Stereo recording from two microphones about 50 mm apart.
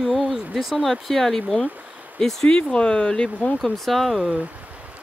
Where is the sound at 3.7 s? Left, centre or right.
Centre.